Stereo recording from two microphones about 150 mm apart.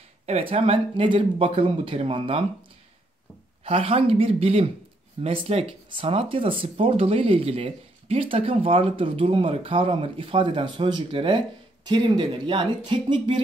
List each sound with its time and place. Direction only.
0.3 s speech: 40° right (ahead or behind)
3.6 s speech: 40° right (ahead or behind)